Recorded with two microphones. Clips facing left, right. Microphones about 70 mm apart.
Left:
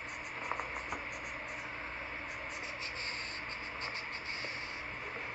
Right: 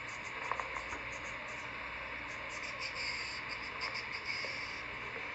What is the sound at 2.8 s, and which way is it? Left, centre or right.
Vehicle, left.